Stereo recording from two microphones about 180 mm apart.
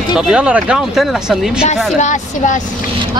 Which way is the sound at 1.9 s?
40° left (ahead or behind).